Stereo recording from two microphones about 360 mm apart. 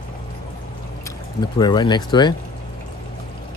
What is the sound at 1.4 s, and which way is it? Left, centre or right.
Speech, centre.